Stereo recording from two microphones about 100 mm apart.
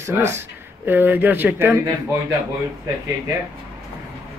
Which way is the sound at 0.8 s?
20° right (ahead or behind).